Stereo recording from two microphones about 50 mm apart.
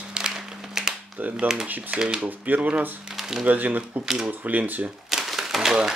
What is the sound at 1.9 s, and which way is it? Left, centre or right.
Speech, centre.